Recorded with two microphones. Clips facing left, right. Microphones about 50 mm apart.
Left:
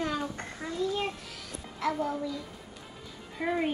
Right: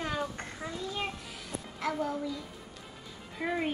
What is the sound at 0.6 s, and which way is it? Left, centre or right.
A woman's voice, centre.